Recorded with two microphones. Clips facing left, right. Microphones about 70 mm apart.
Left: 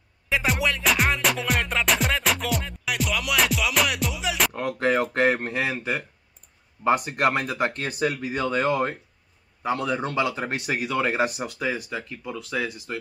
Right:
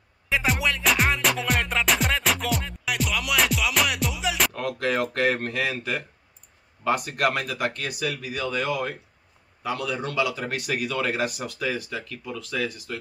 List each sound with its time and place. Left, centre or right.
0.3 s music: centre
4.6 s speech: left